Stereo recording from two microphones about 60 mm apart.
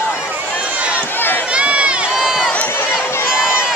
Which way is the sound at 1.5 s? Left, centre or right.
Centre.